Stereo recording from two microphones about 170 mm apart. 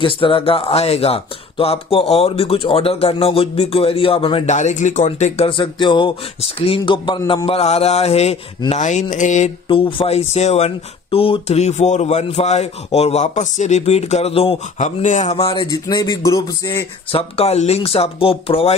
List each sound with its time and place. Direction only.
0.0 s speech: 30° left (ahead or behind)
4.6 s speech: 45° left (ahead or behind)
9.7 s speech: 30° left (ahead or behind)
17.2 s speech: 35° left (ahead or behind)